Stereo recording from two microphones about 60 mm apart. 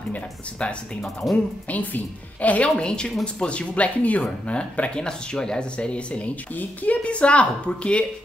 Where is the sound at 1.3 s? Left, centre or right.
Left.